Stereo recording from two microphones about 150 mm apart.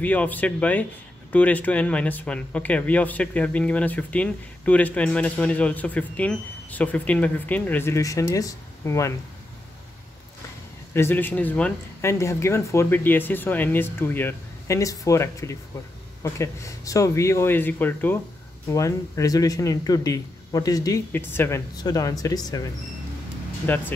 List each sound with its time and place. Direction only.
0.0 s speech: 10° left (ahead or behind)
10.9 s speech: 15° left (ahead or behind)